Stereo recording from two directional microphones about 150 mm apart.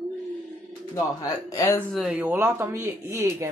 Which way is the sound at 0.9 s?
20° left (ahead or behind).